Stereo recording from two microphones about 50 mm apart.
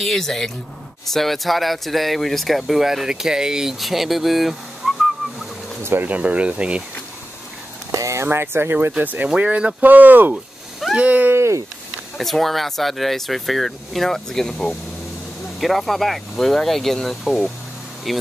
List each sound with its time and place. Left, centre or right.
0.0 s speech: centre
3.8 s speech: centre
6.0 s speech: right
7.9 s vehicle: right
8.3 s speech: right
8.9 s speech: right
11.0 s speech: right
11.3 s a sound: right
12.2 s speech: centre
15.6 s speech: centre